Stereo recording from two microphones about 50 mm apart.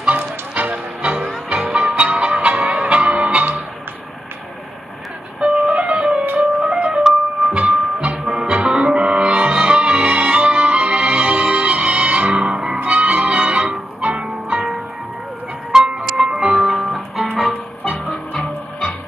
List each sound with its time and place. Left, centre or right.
0.6 s music: right
1.5 s music: centre
5.4 s music: right
15.7 s music: centre
16.6 s music: centre
17.8 s music: left